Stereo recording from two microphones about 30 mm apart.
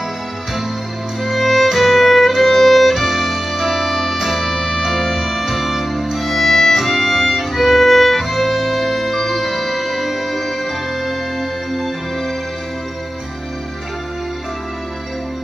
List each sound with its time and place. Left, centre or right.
1.3 s music: centre
6.1 s music: centre
7.5 s music: centre